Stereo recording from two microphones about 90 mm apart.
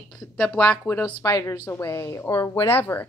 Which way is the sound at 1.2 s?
40° left (ahead or behind).